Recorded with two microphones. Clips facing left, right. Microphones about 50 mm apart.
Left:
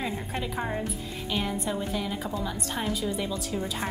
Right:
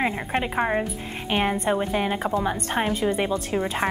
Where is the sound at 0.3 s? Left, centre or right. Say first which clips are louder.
Right 8 dB; right.